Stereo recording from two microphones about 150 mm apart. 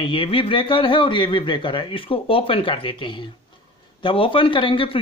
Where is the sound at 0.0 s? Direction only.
35° left (ahead or behind).